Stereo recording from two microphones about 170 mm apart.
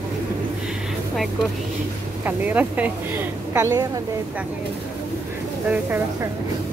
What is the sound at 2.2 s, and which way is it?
A woman's voice, 10° right (ahead or behind).